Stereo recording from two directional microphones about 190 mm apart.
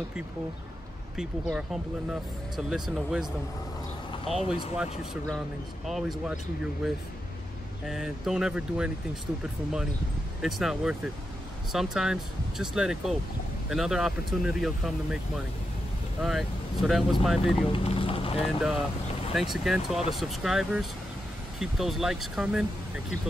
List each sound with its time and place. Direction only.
1.1 s speech: 5° right (ahead or behind)
4.3 s speech: centre (ahead or behind)
5.9 s speech: centre (ahead or behind)
17.7 s a sound: 30° left (ahead or behind)
18.4 s speech: centre (ahead or behind)